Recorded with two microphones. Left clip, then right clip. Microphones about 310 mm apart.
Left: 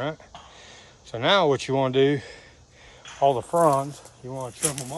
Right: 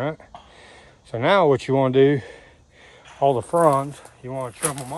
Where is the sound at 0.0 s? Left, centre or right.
Right.